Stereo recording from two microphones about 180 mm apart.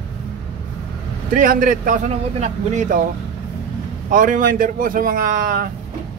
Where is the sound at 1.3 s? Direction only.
50° right (ahead or behind).